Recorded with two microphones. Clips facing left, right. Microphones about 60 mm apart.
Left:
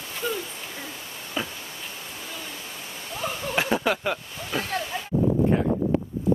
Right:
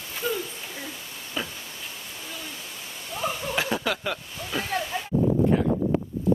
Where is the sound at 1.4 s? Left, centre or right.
Centre.